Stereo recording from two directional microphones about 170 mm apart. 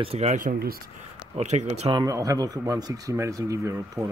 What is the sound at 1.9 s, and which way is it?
Speech, 25° right (ahead or behind).